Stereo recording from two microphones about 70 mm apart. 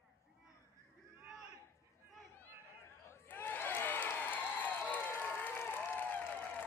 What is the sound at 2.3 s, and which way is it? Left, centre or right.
Crowd, left.